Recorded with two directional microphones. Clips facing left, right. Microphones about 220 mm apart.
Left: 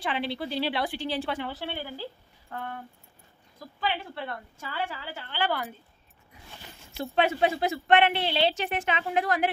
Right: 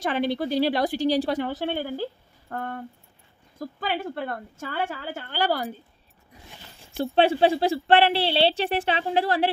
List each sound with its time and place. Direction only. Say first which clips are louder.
0.0 s a woman's voice: right 6 dB; 45° right (ahead or behind)
7.0 s speech: right 5 dB; 30° right (ahead or behind)